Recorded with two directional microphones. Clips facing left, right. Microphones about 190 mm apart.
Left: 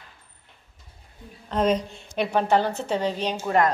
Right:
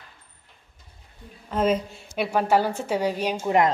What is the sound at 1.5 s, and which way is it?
A woman's voice, 5° right (ahead or behind).